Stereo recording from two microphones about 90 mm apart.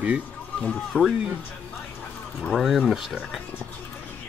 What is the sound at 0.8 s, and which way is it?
Speech, centre (ahead or behind).